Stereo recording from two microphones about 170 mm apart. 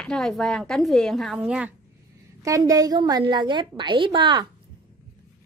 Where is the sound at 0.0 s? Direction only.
5° left (ahead or behind).